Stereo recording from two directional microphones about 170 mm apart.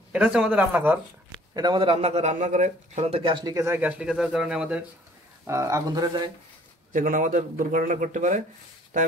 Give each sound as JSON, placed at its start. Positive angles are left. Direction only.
{"t": 0.1, "sound": "speech", "side_deg": -5}
{"t": 1.5, "sound": "a man's voice", "side_deg": -25}
{"t": 5.5, "sound": "a man's voice", "side_deg": -20}
{"t": 6.9, "sound": "a man's voice", "side_deg": -50}